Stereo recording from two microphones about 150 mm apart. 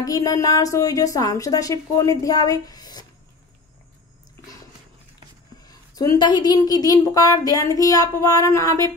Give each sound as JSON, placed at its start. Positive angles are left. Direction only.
{"t": 0.0, "sound": "a woman's voice", "side_deg": 25}
{"t": 5.7, "sound": "a woman's voice", "side_deg": 25}